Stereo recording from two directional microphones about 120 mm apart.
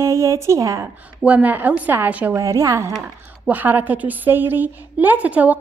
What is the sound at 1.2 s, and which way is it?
A woman's voice, 15° right (ahead or behind).